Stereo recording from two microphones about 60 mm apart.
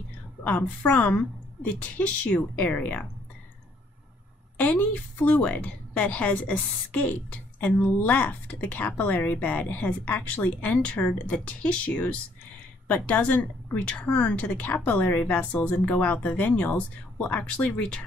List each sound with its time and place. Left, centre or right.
0.4 s a woman's voice: left
4.6 s a woman's voice: left